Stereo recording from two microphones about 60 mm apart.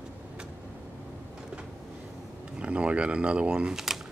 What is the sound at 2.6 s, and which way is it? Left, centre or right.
Speech, centre.